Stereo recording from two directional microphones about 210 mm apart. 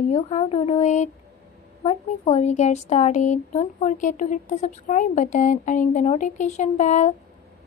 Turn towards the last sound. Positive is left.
turn(degrees=35)  # may be behind; listen again after turning